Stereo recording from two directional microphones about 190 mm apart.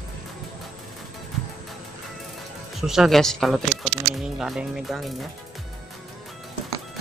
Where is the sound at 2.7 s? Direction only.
Centre (ahead or behind).